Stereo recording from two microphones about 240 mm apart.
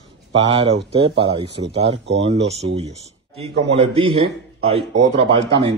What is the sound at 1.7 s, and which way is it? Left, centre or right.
Speech, right.